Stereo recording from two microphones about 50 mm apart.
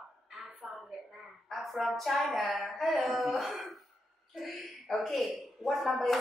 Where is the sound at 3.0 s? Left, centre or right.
Centre.